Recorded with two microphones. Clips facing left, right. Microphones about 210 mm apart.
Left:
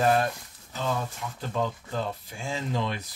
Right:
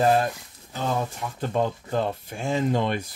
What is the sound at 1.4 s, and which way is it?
Speech, 45° right (ahead or behind).